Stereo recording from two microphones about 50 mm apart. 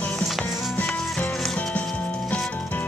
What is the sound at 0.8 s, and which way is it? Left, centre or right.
Rub, centre.